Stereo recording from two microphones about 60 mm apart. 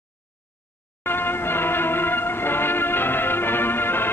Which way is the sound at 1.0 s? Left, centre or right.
Left.